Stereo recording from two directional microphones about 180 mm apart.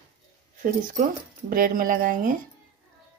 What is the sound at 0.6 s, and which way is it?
Speech, 45° right (ahead or behind).